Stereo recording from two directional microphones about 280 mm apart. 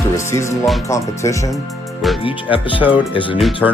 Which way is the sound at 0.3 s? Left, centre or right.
Centre.